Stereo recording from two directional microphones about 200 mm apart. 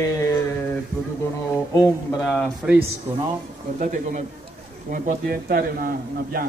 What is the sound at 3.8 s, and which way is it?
A man's voice, 40° right (ahead or behind).